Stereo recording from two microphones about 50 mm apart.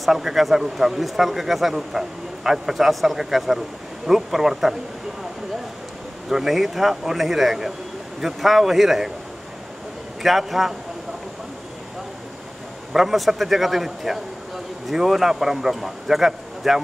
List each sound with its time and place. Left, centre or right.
0.0 s speech: centre
6.2 s speech: centre
10.2 s speech: centre
12.9 s speech: centre